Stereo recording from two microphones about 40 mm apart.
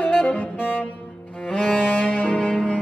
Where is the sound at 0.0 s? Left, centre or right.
Left.